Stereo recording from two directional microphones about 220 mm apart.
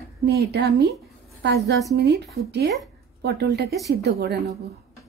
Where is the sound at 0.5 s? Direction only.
50° right (ahead or behind).